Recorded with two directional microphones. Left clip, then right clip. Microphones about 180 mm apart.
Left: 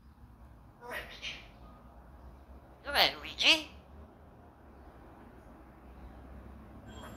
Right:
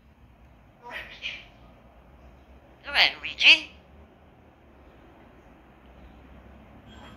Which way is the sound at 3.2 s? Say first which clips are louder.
Right 9 dB; 25° left (ahead or behind).